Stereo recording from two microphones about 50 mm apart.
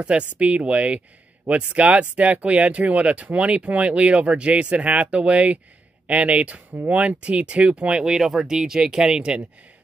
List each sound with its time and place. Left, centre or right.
0.0 s speech: right